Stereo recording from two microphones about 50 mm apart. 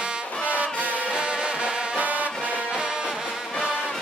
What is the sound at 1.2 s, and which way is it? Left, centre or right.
Music, centre.